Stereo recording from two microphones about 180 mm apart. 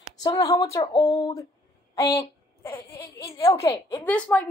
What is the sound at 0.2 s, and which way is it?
A woman's voice, 20° left (ahead or behind).